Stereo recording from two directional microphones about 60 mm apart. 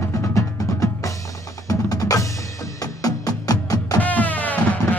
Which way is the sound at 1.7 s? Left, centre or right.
Left.